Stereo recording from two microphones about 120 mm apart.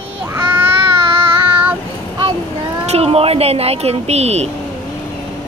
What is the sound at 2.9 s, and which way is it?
Speech, 55° right (ahead or behind).